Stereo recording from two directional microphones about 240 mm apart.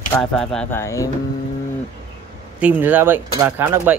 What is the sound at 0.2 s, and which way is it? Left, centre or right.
Speech, centre.